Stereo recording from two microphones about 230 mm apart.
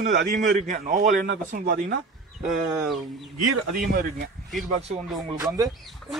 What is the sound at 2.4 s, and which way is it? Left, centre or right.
Speech, centre.